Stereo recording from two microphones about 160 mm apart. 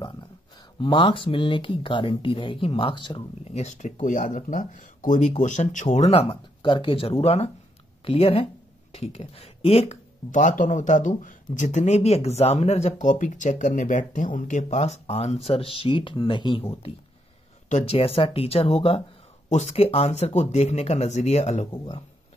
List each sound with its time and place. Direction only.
0.7 s speech: 30° left (ahead or behind)
3.5 s speech: 45° left (ahead or behind)
10.3 s speech: 55° left (ahead or behind)